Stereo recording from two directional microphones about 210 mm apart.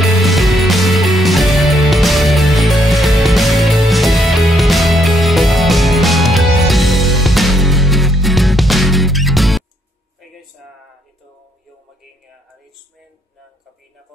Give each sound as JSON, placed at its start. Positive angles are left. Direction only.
{"t": 0.0, "sound": "music", "side_deg": 0}